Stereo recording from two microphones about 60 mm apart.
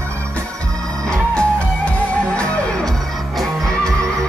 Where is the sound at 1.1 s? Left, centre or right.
Centre.